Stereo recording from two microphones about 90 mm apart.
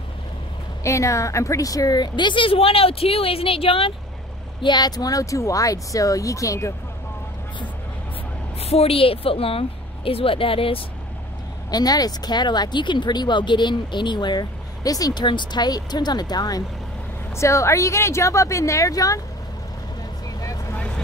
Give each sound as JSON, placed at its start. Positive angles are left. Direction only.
{"t": 0.8, "sound": "a woman's voice", "side_deg": 35}
{"t": 4.6, "sound": "speech", "side_deg": 55}
{"t": 8.8, "sound": "a woman's voice", "side_deg": 90}
{"t": 11.7, "sound": "speech", "side_deg": 45}
{"t": 17.4, "sound": "speech", "side_deg": 35}
{"t": 20.3, "sound": "vehicle", "side_deg": 35}